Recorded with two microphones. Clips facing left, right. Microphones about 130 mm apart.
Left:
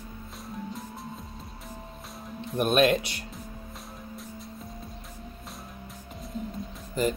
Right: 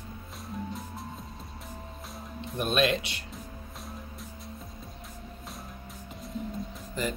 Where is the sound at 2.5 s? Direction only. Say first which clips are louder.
Left 4 dB; 50° left (ahead or behind).